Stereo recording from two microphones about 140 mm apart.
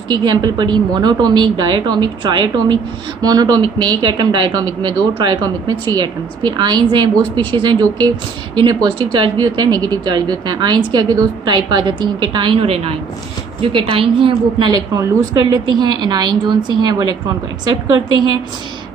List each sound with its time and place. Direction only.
0.1 s a woman's voice: 30° right (ahead or behind)